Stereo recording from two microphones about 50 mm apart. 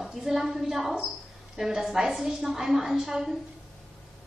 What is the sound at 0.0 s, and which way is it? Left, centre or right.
A woman's voice, centre.